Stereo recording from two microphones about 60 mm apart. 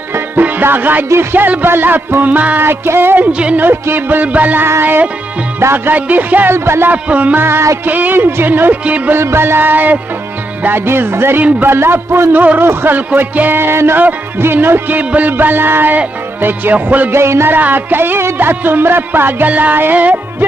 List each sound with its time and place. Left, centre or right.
0.4 s music: right
1.3 s speech: right
2.6 s speech: right
4.6 s a man's voice: right
5.9 s speech: right
6.5 s a man's voice: right
6.9 s speech: right
7.3 s speech: right
7.8 s speech: right
9.1 s speech: right
17.1 s a man's voice: right
17.6 s speech: right